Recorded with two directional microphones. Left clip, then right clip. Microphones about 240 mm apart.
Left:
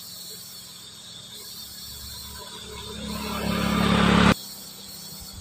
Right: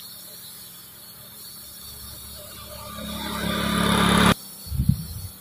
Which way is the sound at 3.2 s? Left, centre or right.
Right.